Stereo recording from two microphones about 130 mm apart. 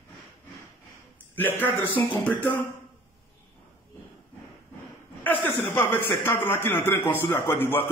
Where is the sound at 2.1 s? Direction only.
10° left (ahead or behind).